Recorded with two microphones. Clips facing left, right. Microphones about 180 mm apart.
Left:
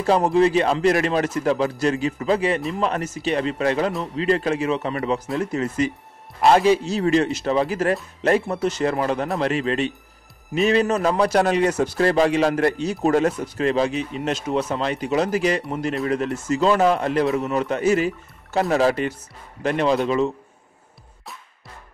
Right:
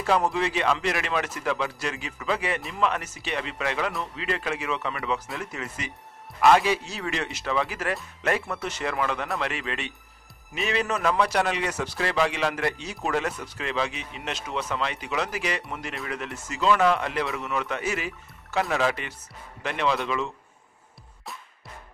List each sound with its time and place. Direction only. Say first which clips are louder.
0.0 s speech: left 7 dB; 35° left (ahead or behind)